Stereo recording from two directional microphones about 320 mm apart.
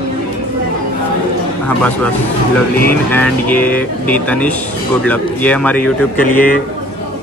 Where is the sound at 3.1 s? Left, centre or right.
Centre.